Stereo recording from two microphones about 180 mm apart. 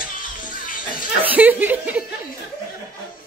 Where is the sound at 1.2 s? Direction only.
10° right (ahead or behind).